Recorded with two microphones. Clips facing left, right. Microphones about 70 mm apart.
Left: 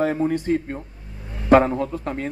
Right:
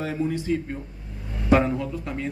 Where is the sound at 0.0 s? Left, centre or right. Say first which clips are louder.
Left 6 dB; left.